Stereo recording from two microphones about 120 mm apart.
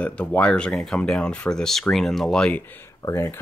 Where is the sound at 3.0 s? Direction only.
25° left (ahead or behind).